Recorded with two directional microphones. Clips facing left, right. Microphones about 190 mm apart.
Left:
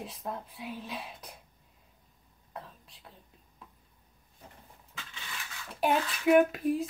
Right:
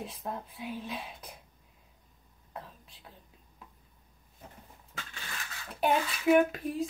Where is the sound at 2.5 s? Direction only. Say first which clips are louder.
Even; centre (ahead or behind).